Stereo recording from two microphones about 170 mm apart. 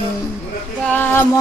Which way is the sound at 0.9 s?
10° left (ahead or behind).